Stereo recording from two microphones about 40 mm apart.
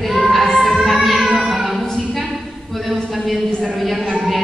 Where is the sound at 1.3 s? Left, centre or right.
Centre.